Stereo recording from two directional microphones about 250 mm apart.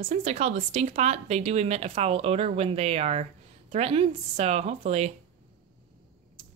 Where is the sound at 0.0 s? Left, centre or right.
Right.